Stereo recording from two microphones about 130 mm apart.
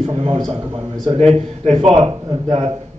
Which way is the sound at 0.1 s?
50° right (ahead or behind).